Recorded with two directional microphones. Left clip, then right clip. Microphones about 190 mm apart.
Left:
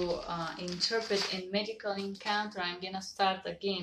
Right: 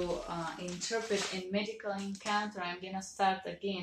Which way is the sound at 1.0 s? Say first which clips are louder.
Left 2 dB; 10° left (ahead or behind).